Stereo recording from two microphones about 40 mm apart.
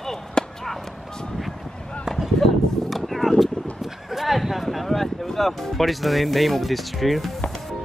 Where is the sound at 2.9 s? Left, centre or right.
Centre.